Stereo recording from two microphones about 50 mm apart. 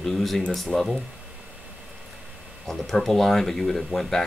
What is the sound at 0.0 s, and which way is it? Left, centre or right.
Speech, centre.